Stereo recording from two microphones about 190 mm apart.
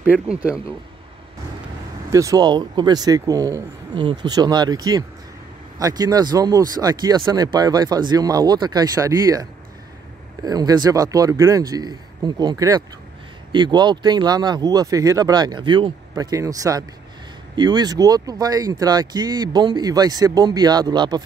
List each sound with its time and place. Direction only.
0.0 s speech: 5° right (ahead or behind)
2.0 s speech: 15° right (ahead or behind)